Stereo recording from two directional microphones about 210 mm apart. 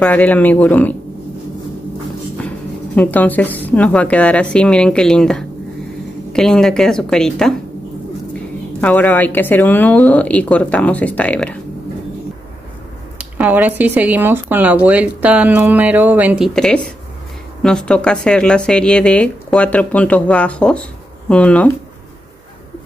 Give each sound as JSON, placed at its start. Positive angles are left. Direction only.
{"t": 0.0, "sound": "speech", "side_deg": 10}
{"t": 3.0, "sound": "speech", "side_deg": 10}
{"t": 8.8, "sound": "speech", "side_deg": 10}
{"t": 13.2, "sound": "speech", "side_deg": -5}